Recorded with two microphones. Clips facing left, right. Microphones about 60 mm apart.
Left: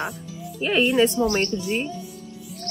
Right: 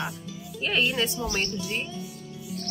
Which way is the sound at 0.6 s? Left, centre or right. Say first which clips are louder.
Left 7 dB; centre.